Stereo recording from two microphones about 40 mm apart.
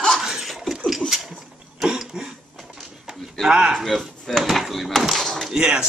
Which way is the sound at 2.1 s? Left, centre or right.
Right.